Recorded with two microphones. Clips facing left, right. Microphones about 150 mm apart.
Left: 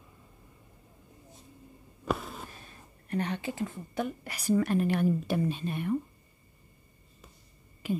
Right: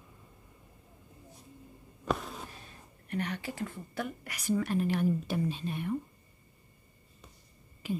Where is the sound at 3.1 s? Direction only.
30° left (ahead or behind).